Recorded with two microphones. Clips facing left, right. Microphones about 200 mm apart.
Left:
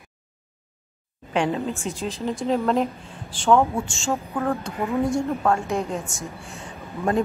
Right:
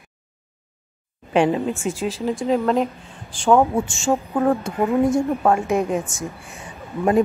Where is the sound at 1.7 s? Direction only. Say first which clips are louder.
Right 5 dB; centre (ahead or behind).